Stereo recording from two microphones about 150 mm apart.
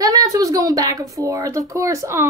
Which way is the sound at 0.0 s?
25° right (ahead or behind).